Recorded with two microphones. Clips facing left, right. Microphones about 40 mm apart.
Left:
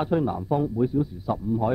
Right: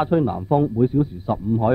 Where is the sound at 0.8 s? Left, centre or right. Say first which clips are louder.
Right 5 dB; right.